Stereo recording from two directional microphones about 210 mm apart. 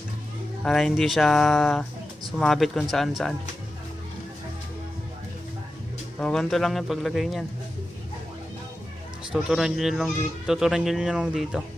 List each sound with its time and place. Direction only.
0.7 s speech: centre (ahead or behind)
6.1 s speech: 5° left (ahead or behind)
9.3 s speech: centre (ahead or behind)